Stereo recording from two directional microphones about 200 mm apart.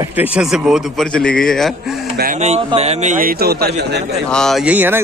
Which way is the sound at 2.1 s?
40° right (ahead or behind).